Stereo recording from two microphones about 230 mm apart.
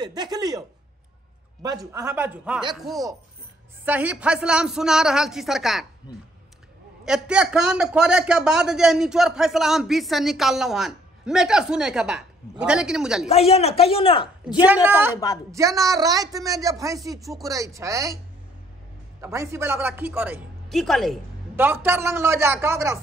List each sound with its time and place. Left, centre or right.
0.0 s speech: centre
1.9 s a woman's voice: centre
7.1 s a man's voice: centre
13.3 s a man's voice: left
14.6 s a woman's voice: centre
15.1 s a woman's voice: centre
15.5 s a woman's voice: centre
19.2 s a woman's voice: centre
21.5 s a woman's voice: centre